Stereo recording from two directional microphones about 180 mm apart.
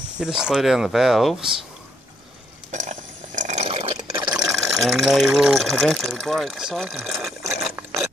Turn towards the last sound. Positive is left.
turn(degrees=-5)  # may be behind; listen again after turning